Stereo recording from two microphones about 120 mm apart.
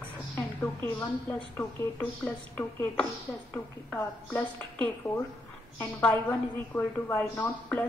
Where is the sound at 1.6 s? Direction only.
15° left (ahead or behind).